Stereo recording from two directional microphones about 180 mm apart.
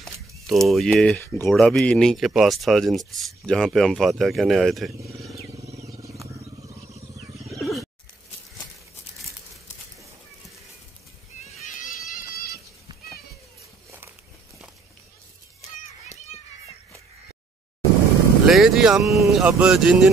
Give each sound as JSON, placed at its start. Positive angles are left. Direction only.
{"t": 0.0, "sound": "speech", "side_deg": 0}
{"t": 5.3, "sound": "vehicle", "side_deg": -15}
{"t": 5.6, "sound": "wild animals", "side_deg": -40}
{"t": 5.9, "sound": "wild animals", "side_deg": -20}
{"t": 7.4, "sound": "wild animals", "side_deg": 0}
{"t": 11.4, "sound": "run", "side_deg": 45}
{"t": 13.8, "sound": "walk", "side_deg": -15}
{"t": 18.4, "sound": "vehicle", "side_deg": 0}
{"t": 19.3, "sound": "speech", "side_deg": -5}